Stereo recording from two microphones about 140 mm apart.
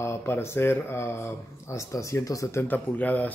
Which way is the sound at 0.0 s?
15° left (ahead or behind).